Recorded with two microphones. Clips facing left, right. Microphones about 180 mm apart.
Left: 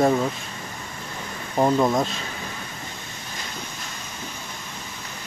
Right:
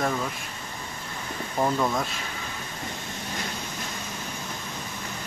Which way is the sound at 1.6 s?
25° left (ahead or behind).